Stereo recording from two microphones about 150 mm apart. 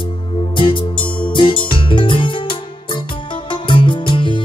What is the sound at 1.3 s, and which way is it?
Music, 35° left (ahead or behind).